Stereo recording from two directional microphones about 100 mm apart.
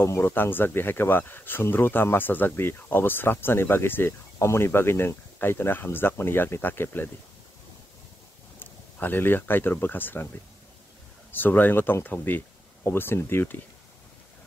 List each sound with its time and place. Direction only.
0.0 s speech: 20° left (ahead or behind)
8.5 s speech: 20° left (ahead or behind)
11.3 s speech: 20° left (ahead or behind)